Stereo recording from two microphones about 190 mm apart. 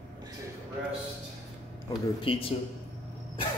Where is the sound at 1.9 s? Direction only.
30° left (ahead or behind).